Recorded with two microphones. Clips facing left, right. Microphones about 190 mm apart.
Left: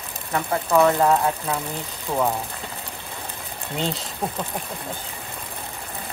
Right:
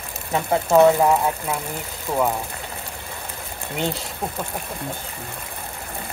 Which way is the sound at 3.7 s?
Centre (ahead or behind).